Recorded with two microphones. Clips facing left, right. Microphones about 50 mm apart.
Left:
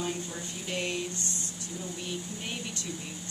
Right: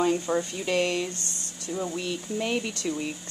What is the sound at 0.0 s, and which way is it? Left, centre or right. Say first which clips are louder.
Speech: right 11 dB; right.